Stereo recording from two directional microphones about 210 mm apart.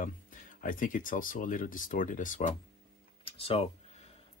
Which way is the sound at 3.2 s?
25° left (ahead or behind).